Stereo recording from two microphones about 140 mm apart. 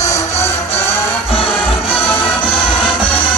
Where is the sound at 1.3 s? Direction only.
40° left (ahead or behind).